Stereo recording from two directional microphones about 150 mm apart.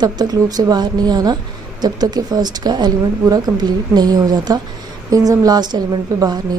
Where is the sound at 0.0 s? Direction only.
25° right (ahead or behind).